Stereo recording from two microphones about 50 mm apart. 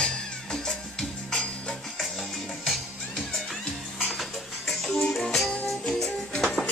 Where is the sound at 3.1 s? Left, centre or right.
Centre.